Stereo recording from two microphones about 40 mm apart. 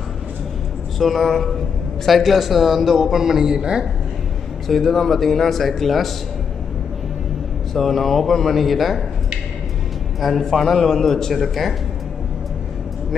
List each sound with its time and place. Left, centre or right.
0.9 s speech: centre
4.6 s speech: centre
7.7 s speech: centre
10.2 s a man's voice: centre